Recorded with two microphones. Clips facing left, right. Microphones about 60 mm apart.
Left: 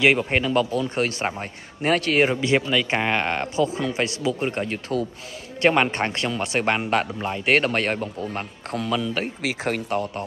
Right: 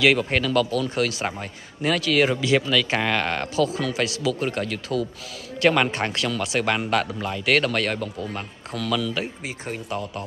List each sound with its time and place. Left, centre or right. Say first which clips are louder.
0.0 s speech: even; left
2.2 s speech: even; left
9.4 s speech: left 6 dB; left
9.8 s speech: left 4 dB; left